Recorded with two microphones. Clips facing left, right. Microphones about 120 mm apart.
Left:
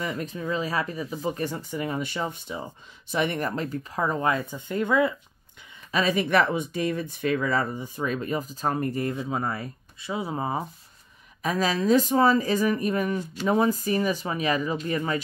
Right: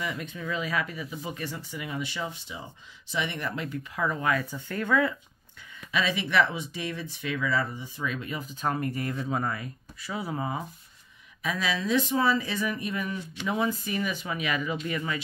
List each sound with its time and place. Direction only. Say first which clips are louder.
0.0 s speech: left 4 dB; 40° left (ahead or behind); by 5.1 s 20° left (ahead or behind)
5.9 s speech: left 5 dB; 45° left (ahead or behind)
11.4 s speech: left 6 dB; 45° left (ahead or behind)